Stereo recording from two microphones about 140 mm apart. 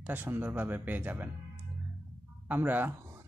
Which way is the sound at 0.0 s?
15° right (ahead or behind).